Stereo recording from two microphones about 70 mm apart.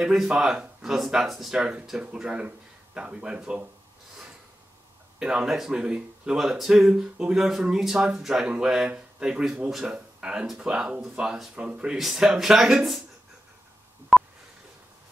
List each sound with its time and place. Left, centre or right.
0.0 s speech: centre
1.6 s speech: centre
5.2 s speech: centre
11.5 s speech: centre
14.1 s a sound: centre